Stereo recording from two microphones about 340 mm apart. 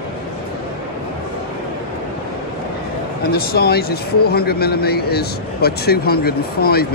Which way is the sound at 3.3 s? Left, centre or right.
Left.